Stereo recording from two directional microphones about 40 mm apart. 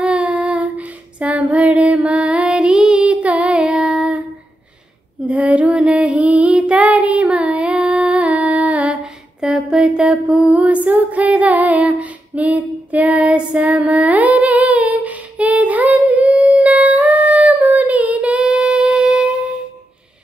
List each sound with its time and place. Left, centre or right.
0.0 s child singing: right
0.4 s female singing: right
2.5 s music: right
3.2 s music: right; by 3.9 s centre
3.9 s female singing: right
5.2 s female singing: right; by 8.2 s centre
8.2 s humming: right
9.4 s mantra: centre
10.3 s music: right
13.4 s child singing: right
13.7 s humming: right